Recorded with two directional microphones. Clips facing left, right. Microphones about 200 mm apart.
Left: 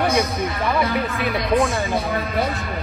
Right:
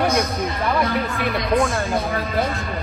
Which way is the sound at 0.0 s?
Centre (ahead or behind).